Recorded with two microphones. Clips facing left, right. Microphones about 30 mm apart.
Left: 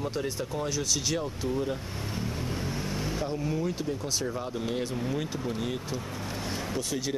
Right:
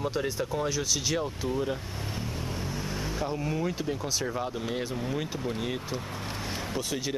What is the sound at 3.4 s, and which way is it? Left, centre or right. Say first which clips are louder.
Speech: even; centre.